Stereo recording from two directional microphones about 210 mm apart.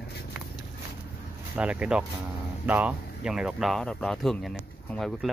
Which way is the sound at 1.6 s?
5° right (ahead or behind).